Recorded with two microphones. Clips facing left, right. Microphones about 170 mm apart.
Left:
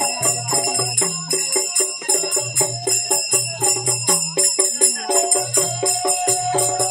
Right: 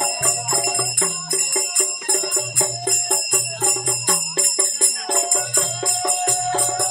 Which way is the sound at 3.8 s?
15° left (ahead or behind).